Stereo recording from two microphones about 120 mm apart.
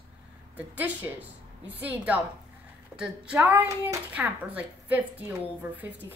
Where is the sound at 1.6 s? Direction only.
15° right (ahead or behind).